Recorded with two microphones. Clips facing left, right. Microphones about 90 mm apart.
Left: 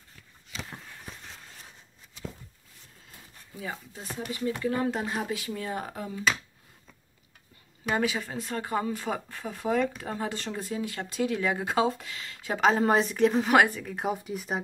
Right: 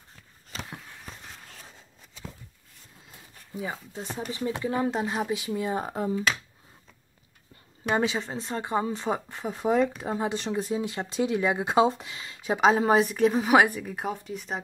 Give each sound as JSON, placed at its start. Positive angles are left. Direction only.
{"t": 3.5, "sound": "speech", "side_deg": -25}
{"t": 7.9, "sound": "speech", "side_deg": -25}
{"t": 14.0, "sound": "speech", "side_deg": 5}